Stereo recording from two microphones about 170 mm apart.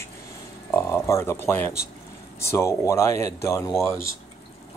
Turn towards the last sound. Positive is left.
turn(degrees=15)  # may be behind; listen again after turning